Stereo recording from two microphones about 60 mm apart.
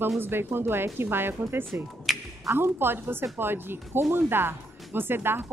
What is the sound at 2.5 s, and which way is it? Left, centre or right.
Speech, right.